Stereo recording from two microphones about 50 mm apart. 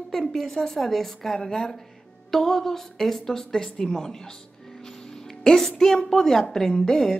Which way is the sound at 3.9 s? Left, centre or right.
Centre.